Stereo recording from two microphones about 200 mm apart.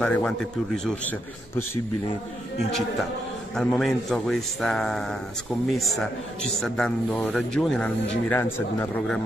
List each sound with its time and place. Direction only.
0.0 s speech: 5° left (ahead or behind)
3.5 s speech: 5° left (ahead or behind)